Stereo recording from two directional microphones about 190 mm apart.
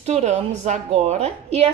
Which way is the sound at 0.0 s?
35° right (ahead or behind).